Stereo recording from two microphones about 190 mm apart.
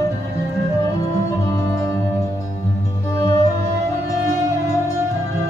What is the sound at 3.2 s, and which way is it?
Music, 20° left (ahead or behind).